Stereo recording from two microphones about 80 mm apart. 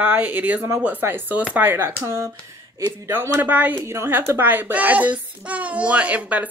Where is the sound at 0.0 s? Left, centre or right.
Right.